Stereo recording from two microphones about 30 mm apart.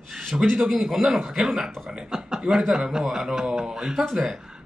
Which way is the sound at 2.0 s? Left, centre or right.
Centre.